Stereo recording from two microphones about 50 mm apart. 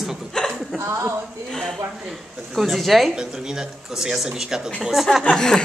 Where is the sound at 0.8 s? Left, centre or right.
Right.